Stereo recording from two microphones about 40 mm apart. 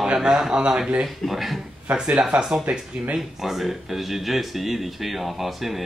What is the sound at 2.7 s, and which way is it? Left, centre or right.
Speech, right.